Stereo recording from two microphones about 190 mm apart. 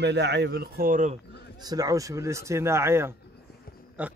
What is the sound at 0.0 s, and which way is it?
Speech, 65° right (ahead or behind).